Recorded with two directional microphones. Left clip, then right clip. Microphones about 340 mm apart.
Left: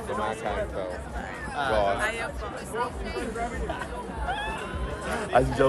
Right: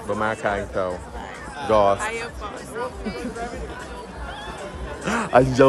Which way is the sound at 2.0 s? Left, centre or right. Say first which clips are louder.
Right 1 dB; centre.